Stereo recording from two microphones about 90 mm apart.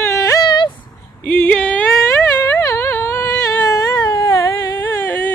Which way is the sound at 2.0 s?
35° left (ahead or behind).